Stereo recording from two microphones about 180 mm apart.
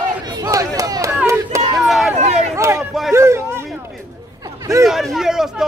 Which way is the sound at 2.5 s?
15° right (ahead or behind).